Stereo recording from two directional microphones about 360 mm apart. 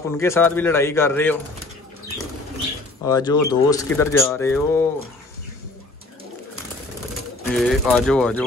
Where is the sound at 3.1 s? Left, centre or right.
Centre.